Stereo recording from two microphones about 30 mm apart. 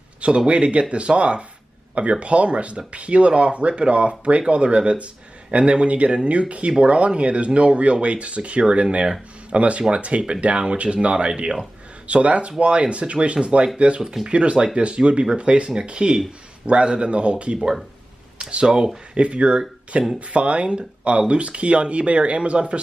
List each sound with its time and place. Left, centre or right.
0.5 s speech: right
12.1 s speech: right
19.1 s speech: right